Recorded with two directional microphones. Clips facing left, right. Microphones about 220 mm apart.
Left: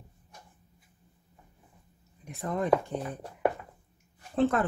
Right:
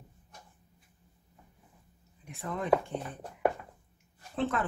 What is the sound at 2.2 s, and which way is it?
Speech, 40° left (ahead or behind).